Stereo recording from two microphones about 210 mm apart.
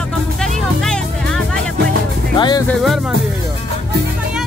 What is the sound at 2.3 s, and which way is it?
Music, 20° left (ahead or behind).